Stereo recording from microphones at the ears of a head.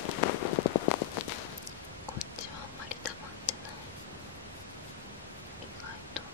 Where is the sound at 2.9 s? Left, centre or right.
Left.